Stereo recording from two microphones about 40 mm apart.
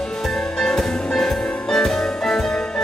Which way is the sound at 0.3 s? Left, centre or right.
Centre.